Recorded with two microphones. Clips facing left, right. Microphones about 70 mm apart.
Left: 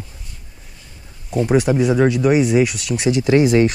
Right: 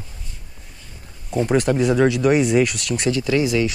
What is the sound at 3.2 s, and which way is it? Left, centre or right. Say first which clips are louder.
Speech: left 7 dB; left.